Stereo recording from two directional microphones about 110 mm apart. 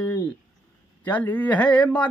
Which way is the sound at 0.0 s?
15° left (ahead or behind).